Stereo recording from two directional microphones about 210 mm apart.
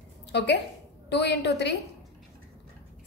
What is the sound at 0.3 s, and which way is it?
A woman's voice, 55° left (ahead or behind).